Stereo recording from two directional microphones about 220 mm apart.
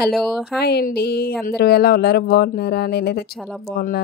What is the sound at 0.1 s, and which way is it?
Speech, centre (ahead or behind).